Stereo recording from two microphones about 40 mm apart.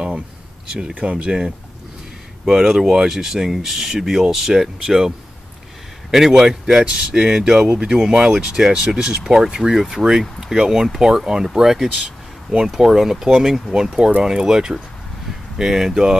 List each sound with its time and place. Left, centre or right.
0.9 s speech: right
2.4 s speech: centre
6.1 s speech: centre